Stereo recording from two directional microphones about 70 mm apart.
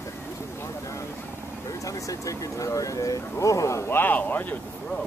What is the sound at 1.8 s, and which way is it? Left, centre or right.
Speech, left.